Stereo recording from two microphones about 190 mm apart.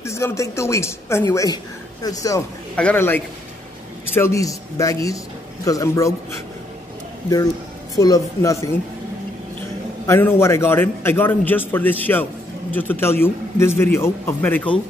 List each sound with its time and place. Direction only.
0.0 s a man's voice: 15° left (ahead or behind)
7.9 s a man's voice: 20° left (ahead or behind)
10.0 s a man's voice: 15° left (ahead or behind)